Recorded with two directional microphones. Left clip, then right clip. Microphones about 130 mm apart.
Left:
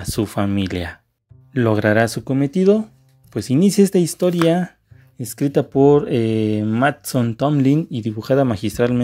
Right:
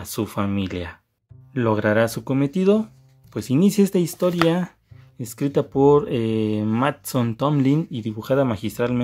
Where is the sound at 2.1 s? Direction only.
20° left (ahead or behind).